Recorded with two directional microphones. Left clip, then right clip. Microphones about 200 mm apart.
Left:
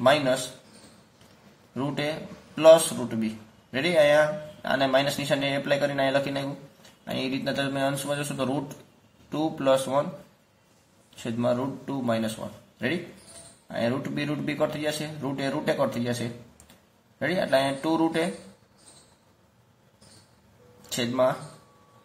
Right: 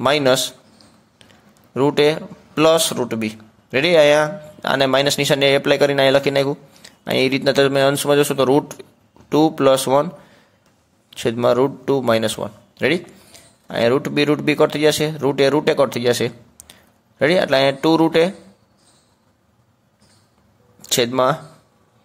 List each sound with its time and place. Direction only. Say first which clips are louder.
0.0 s a man's voice: right 6 dB; 50° right (ahead or behind)
1.8 s a man's voice: right 14 dB; 55° right (ahead or behind)
11.2 s a man's voice: right 11 dB; 50° right (ahead or behind)
20.9 s a man's voice: right 8 dB; 50° right (ahead or behind)